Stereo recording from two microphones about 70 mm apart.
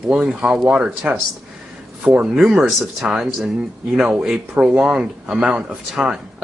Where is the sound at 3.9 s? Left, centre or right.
Centre.